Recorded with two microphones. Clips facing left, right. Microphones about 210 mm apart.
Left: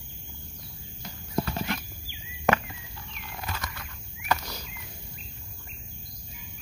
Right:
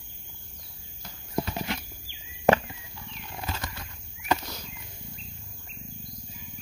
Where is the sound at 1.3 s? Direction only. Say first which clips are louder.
Left 1 dB; 15° right (ahead or behind).